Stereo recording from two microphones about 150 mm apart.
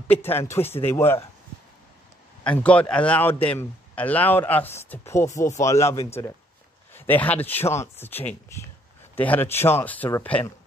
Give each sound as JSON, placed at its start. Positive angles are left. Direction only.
{"t": 0.2, "sound": "speech", "side_deg": 15}
{"t": 2.4, "sound": "speech", "side_deg": 10}